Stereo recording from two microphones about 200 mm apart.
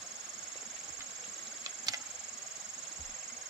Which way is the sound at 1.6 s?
15° right (ahead or behind).